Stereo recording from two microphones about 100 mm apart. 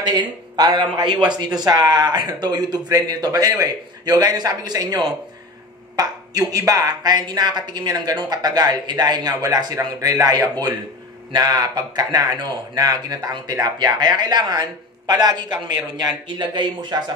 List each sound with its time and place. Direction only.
0.0 s a man's voice: 45° right (ahead or behind)